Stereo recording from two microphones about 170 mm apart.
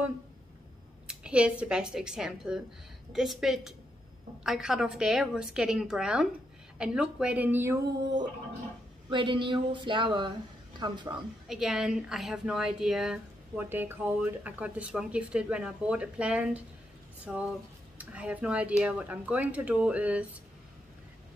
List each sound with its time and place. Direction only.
1.0 s a woman's voice: 5° right (ahead or behind)
9.1 s a sound: 30° right (ahead or behind)
11.4 s a woman's voice: 5° right (ahead or behind)
17.9 s speech: 10° right (ahead or behind)